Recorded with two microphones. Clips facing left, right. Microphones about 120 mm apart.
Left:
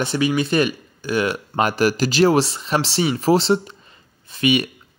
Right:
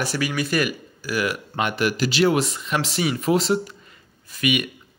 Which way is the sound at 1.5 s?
40° left (ahead or behind).